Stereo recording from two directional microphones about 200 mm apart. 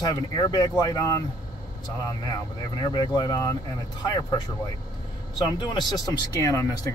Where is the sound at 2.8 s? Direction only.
20° left (ahead or behind).